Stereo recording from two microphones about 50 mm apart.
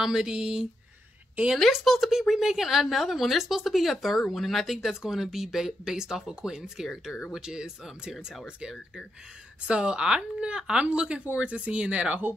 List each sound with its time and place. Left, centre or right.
0.0 s speech: centre
1.7 s speech: centre; by 12.2 s right